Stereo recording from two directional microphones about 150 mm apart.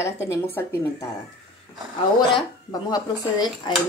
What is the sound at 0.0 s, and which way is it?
Speech, 20° left (ahead or behind).